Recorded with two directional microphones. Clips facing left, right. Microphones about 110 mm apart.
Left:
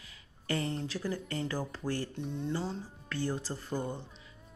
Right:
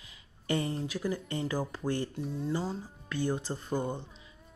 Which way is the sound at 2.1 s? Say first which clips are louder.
Right 2 dB; 5° right (ahead or behind).